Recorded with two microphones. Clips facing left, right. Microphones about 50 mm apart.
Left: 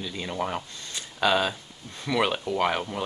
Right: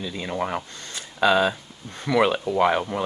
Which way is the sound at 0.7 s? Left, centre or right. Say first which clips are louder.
Right 1 dB; right.